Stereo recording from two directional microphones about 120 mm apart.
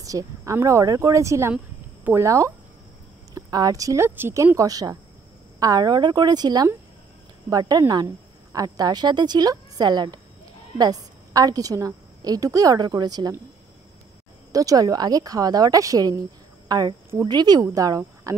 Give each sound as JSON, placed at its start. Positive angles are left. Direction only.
{"t": 0.0, "sound": "a woman's voice", "side_deg": -25}
{"t": 14.5, "sound": "speech", "side_deg": -30}